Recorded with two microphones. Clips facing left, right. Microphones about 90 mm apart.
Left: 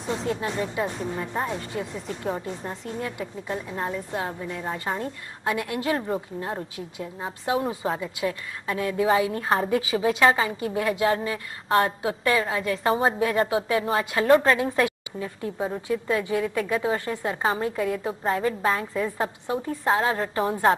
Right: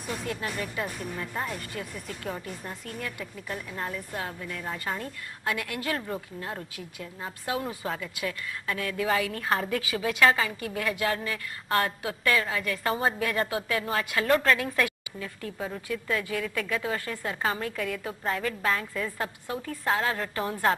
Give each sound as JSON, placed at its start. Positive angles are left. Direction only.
{"t": 0.0, "sound": "speech", "side_deg": 25}